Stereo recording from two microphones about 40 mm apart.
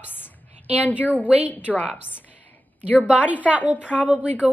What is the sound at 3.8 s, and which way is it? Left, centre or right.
Speech, left.